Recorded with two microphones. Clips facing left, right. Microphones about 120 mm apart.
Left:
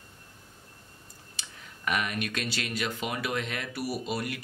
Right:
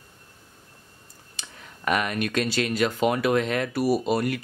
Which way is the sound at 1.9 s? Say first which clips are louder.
Right 6 dB; 45° right (ahead or behind).